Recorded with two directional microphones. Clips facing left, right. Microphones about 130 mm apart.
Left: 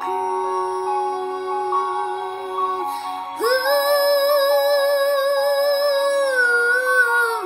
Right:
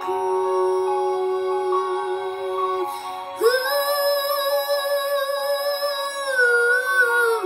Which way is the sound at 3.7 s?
65° left (ahead or behind).